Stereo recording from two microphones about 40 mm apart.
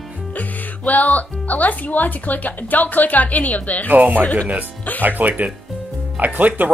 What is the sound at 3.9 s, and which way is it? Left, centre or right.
Speech, right.